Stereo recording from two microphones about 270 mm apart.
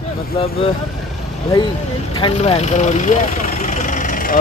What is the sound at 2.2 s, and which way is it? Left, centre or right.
Speech, left.